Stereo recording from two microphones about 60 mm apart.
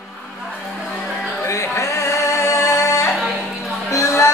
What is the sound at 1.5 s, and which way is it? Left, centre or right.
Singing, left.